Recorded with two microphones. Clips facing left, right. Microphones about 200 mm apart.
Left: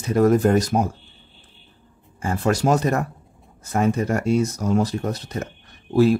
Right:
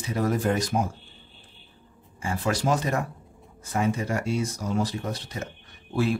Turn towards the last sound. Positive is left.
turn(degrees=40)  # may be behind; listen again after turning